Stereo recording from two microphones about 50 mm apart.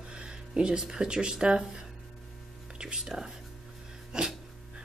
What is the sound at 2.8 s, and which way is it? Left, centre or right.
Speech, centre.